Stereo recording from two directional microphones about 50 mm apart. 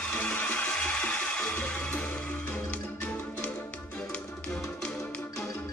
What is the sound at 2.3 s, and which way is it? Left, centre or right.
Music, left.